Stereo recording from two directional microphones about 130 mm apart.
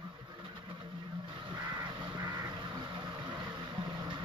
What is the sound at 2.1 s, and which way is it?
Vehicle, 25° right (ahead or behind).